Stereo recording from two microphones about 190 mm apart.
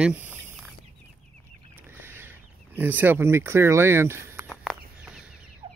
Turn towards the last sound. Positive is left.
turn(degrees=-5)  # may be behind; listen again after turning